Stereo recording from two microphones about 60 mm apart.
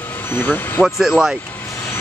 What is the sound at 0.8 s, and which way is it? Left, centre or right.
Speech, centre.